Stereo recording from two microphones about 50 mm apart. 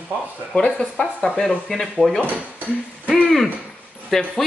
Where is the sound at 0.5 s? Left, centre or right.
Left.